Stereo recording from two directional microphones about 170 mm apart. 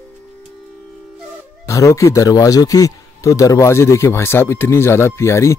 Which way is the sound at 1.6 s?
20° left (ahead or behind).